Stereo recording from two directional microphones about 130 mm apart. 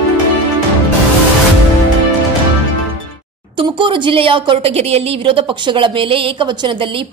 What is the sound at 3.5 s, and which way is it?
A woman's voice, 40° right (ahead or behind).